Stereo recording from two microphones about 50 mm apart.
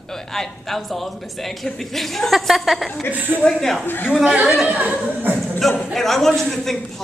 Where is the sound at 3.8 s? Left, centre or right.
Left.